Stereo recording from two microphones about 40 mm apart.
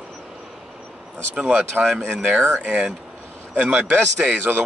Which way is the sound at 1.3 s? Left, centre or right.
Right.